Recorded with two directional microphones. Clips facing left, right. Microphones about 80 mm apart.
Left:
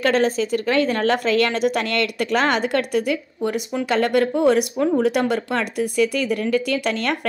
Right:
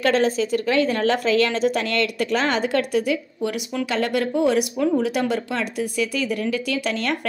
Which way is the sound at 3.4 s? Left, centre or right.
Left.